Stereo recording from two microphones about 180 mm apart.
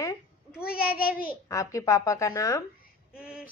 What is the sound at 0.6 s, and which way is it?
Speech, 55° left (ahead or behind).